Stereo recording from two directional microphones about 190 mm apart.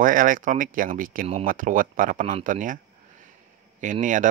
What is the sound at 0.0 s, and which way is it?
Speech, 45° right (ahead or behind).